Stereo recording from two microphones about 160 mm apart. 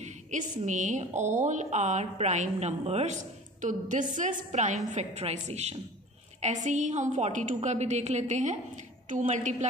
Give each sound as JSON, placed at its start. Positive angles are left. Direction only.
{"t": 0.0, "sound": "a sound", "side_deg": -50}
{"t": 0.6, "sound": "a woman's voice", "side_deg": -50}
{"t": 3.6, "sound": "a woman's voice", "side_deg": -55}